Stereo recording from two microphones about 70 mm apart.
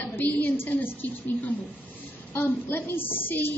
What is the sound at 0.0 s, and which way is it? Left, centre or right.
A woman's voice, left.